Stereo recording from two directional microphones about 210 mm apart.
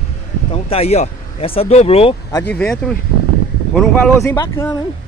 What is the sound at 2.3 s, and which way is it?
Speech, 15° left (ahead or behind).